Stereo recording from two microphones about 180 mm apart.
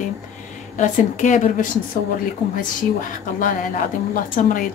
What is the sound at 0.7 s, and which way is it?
Speech, 45° left (ahead or behind).